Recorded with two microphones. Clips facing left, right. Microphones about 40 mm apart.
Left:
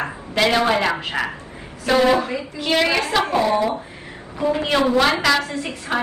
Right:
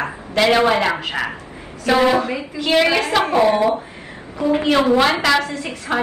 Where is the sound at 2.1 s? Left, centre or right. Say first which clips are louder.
Right 2 dB; right.